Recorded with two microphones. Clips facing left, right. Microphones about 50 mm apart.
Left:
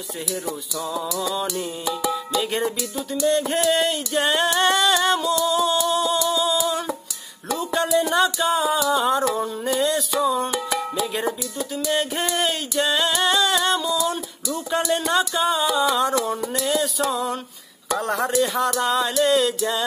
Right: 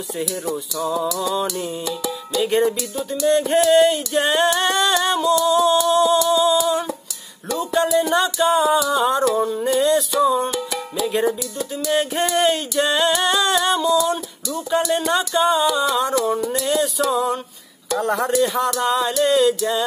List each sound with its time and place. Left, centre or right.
1.1 s music: centre
1.9 s music: centre
2.4 s music: centre
6.2 s humming: centre
7.5 s music: centre
10.5 s music: centre
11.1 s music: centre